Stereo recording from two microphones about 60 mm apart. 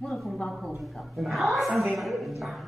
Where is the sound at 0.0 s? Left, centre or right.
Centre.